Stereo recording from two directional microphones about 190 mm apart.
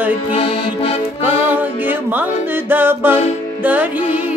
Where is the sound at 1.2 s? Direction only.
10° right (ahead or behind).